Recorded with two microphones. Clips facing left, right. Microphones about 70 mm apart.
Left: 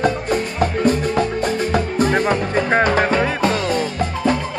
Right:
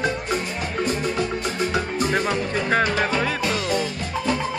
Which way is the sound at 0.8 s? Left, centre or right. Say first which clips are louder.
Left 5 dB; left.